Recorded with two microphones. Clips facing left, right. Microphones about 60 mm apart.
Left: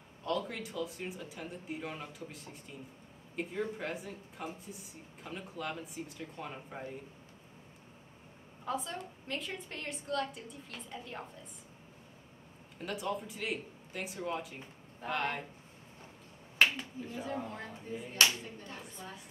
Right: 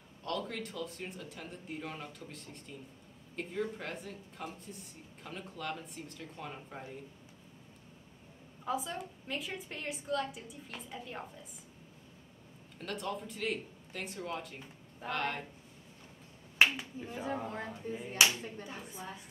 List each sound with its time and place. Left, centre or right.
0.2 s speech: centre
8.6 s speech: centre
12.7 s speech: centre
16.5 s finger snapping: centre
17.0 s speech: right
17.6 s speech: centre